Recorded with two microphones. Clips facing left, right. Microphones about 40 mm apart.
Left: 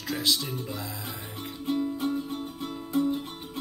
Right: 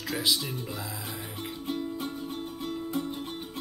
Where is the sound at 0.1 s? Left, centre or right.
Centre.